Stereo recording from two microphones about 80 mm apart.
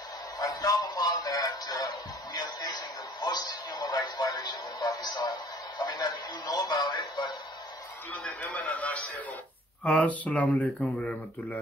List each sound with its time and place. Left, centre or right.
0.4 s speech: left
8.1 s speech: centre